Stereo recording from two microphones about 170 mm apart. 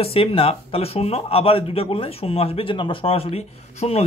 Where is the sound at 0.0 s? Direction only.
35° left (ahead or behind).